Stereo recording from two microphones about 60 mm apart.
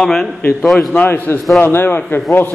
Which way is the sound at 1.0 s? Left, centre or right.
Left.